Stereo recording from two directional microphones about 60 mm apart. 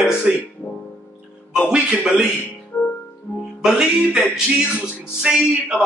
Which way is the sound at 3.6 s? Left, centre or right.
Centre.